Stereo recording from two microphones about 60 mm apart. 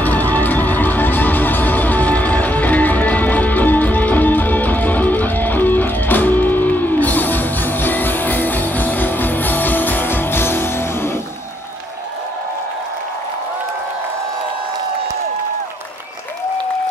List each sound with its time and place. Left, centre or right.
0.0 s music: left